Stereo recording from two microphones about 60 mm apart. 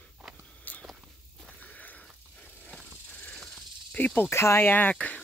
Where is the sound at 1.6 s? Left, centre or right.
Left.